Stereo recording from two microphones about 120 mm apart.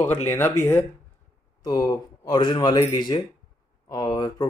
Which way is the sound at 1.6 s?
30° left (ahead or behind).